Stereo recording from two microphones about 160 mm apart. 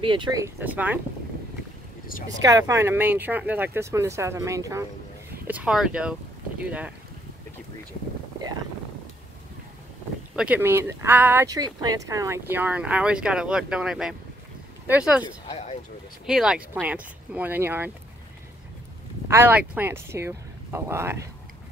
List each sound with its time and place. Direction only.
0.0 s speech: 30° right (ahead or behind); by 0.9 s 10° right (ahead or behind)
2.3 s speech: 20° right (ahead or behind)
5.5 s speech: 5° right (ahead or behind)
10.3 s speech: 10° right (ahead or behind)
16.3 s speech: 5° right (ahead or behind)
19.2 s speech: 15° right (ahead or behind)